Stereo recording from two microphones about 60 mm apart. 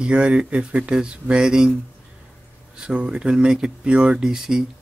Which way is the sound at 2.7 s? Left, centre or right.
Centre.